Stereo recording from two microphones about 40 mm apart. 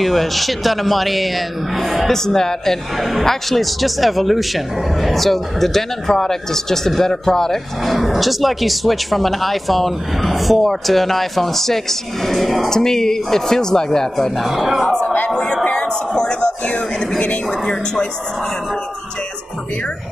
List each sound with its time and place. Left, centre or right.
0.0 s speech: centre
3.0 s speech: centre
12.6 s speech: centre
14.1 s speech: centre
15.3 s a sound: centre
17.5 s speech: centre